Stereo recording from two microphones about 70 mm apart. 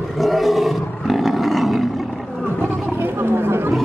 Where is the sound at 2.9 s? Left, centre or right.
Right.